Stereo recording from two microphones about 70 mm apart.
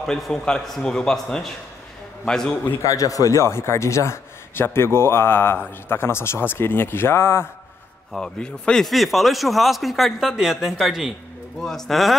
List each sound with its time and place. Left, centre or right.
0.0 s a man's voice: centre
2.8 s a man's voice: left
8.1 s a man's voice: centre
8.8 s a man's voice: centre